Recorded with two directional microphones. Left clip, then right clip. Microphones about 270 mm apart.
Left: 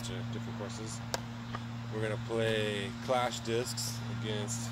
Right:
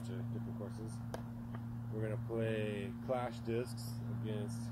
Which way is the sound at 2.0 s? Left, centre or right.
Centre.